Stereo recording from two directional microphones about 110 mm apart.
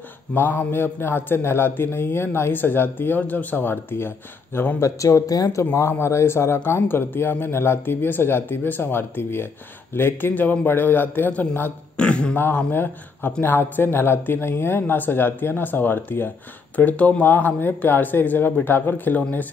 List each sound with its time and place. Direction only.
0.3 s a man's voice: 15° left (ahead or behind)